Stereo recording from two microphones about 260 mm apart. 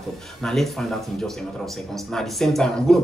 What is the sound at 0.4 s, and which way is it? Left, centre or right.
Speech, centre.